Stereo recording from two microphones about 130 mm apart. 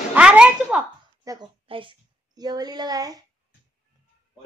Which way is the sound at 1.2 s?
30° right (ahead or behind).